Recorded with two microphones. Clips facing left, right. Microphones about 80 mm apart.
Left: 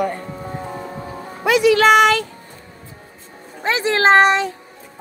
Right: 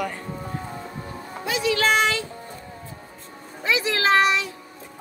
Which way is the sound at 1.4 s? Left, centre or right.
Left.